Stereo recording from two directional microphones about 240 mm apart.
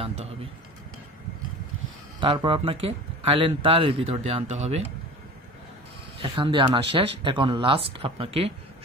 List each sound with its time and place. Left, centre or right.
0.0 s a sound: right
2.1 s speech: centre
6.2 s speech: right